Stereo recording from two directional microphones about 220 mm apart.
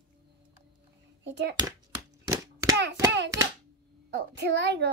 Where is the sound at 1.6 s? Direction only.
15° right (ahead or behind).